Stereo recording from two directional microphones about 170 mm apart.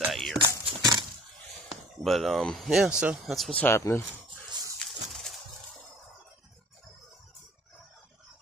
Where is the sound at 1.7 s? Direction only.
Centre (ahead or behind).